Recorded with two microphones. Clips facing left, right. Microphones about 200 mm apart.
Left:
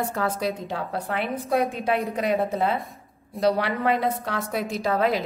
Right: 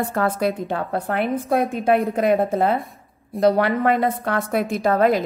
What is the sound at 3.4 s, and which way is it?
A woman's voice, 55° right (ahead or behind).